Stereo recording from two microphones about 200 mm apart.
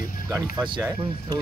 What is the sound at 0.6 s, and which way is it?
Speech, 25° right (ahead or behind).